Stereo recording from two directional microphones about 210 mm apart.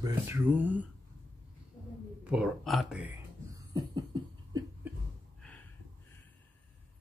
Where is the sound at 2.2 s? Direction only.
5° right (ahead or behind).